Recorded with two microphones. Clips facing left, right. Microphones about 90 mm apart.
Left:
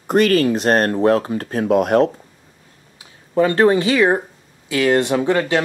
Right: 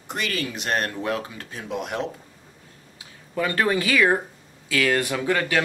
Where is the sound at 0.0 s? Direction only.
45° left (ahead or behind).